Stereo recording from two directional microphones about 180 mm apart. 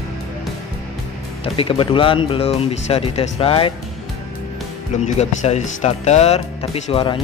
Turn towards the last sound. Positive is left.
turn(degrees=30)  # may be behind; listen again after turning